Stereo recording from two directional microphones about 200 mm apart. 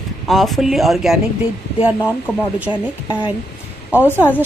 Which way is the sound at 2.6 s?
10° right (ahead or behind).